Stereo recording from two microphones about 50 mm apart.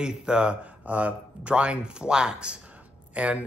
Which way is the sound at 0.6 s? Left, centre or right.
Right.